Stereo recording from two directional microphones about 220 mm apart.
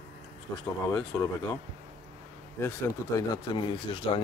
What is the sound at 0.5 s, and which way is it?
Speech, 10° left (ahead or behind).